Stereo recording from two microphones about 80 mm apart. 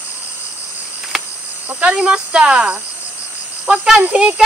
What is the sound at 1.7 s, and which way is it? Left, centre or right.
Speech, centre.